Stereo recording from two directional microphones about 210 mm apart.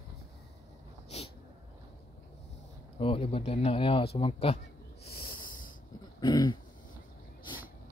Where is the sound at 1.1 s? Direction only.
30° left (ahead or behind).